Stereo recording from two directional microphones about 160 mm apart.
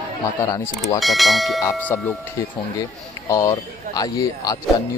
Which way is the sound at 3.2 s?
20° left (ahead or behind).